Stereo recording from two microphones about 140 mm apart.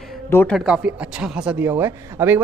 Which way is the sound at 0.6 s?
5° right (ahead or behind).